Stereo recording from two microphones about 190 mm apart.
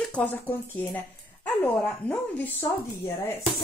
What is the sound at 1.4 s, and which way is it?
Speech, 10° left (ahead or behind).